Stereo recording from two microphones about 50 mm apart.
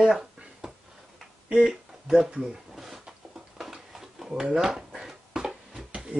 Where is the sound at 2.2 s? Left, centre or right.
Right.